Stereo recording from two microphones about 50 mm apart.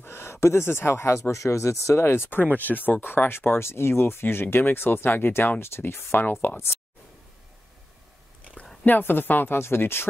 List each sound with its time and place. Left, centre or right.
0.0 s speech: left
2.0 s speech: left
2.4 s speech: left
3.0 s speech: left
8.8 s speech: left